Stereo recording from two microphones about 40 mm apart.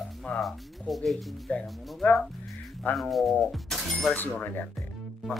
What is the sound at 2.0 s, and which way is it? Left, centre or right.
Speech, left.